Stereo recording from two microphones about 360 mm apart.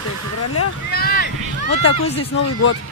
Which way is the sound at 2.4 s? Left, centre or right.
Left.